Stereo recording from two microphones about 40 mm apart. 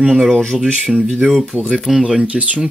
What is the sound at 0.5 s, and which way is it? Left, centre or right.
Speech, centre.